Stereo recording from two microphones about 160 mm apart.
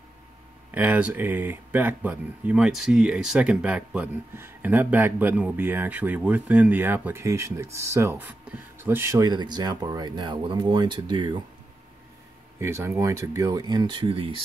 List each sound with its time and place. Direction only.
0.7 s speech: 10° right (ahead or behind); by 11.4 s 30° right (ahead or behind)
12.5 s speech: 15° right (ahead or behind); by 14.4 s 35° right (ahead or behind)